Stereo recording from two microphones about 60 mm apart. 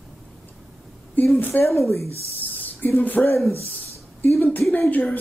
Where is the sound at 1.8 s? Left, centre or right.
Left.